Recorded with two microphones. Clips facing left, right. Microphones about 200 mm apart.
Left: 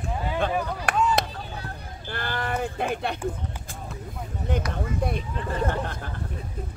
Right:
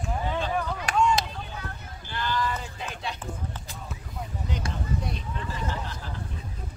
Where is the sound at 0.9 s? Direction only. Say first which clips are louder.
Even; 55° left (ahead or behind).